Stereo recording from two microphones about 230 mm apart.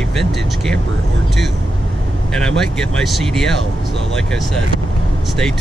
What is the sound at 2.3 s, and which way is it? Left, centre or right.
Speech, centre.